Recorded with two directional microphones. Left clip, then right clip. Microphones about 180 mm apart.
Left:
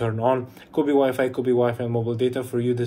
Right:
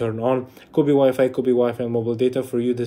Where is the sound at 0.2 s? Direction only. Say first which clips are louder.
Even; 20° right (ahead or behind).